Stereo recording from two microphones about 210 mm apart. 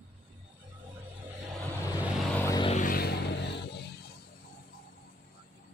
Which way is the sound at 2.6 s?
30° left (ahead or behind).